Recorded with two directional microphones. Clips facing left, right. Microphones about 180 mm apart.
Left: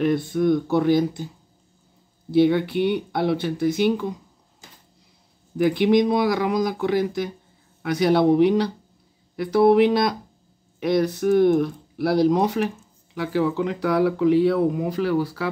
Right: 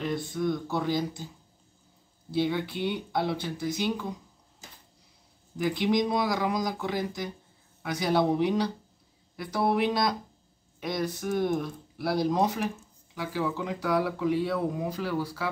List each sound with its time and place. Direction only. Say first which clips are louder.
0.0 s speech: left 9 dB; 60° left (ahead or behind)
2.3 s speech: left 10 dB; 60° left (ahead or behind)
5.6 s speech: left 8 dB; 65° left (ahead or behind)